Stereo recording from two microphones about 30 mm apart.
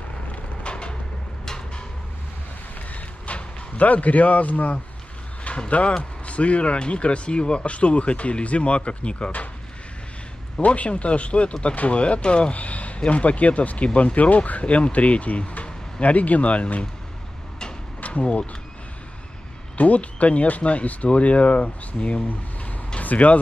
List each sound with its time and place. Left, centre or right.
0.7 s vehicle: left
3.3 s a sound: left
3.7 s speech: left
5.7 s speech: left
10.6 s speech: left
12.5 s speech: left
18.0 s a sound: left
19.8 s speech: left
21.1 s speech: left
22.9 s speech: left